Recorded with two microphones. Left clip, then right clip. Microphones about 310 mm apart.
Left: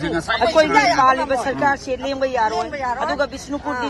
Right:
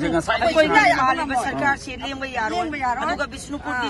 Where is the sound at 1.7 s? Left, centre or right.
Left.